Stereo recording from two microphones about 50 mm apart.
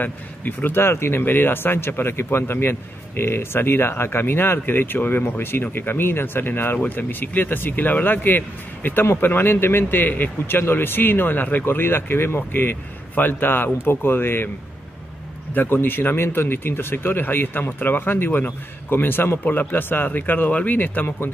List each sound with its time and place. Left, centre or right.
0.0 s speech: left
11.6 s speech: left
15.5 s speech: left